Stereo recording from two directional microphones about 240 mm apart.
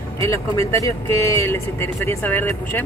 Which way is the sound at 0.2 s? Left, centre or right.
Centre.